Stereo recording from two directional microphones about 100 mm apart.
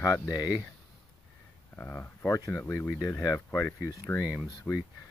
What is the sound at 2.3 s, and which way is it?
Speech, 35° left (ahead or behind).